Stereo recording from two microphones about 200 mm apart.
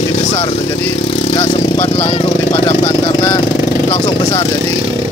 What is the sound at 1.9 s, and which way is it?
Speech, 30° left (ahead or behind).